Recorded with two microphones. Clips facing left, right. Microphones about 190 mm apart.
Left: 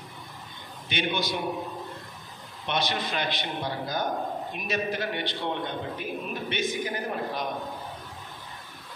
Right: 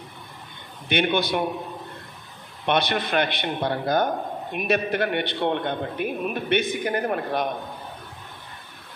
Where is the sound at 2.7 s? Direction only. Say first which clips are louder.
Right 6 dB; 60° right (ahead or behind).